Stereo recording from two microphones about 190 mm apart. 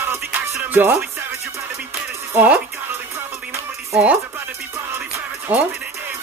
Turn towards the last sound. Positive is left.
turn(degrees=-15)  # may be behind; listen again after turning